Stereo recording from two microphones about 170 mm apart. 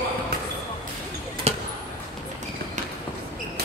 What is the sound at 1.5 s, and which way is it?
Basketball bounce, 40° right (ahead or behind).